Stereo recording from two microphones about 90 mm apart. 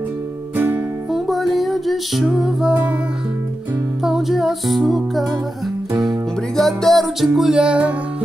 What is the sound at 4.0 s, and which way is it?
Music, 5° right (ahead or behind).